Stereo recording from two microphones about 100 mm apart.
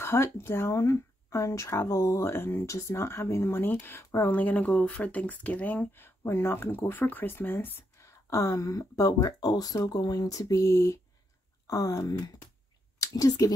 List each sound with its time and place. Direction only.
0.0 s speech: 25° left (ahead or behind)
8.0 s speech: 30° left (ahead or behind)